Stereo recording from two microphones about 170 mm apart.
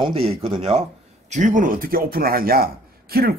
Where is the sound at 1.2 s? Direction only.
45° right (ahead or behind).